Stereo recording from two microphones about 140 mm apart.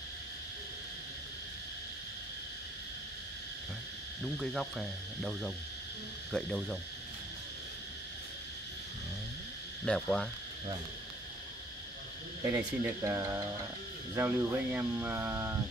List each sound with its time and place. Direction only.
4.2 s insect: centre (ahead or behind)
9.8 s insect: 5° left (ahead or behind)
12.4 s speech: 20° right (ahead or behind)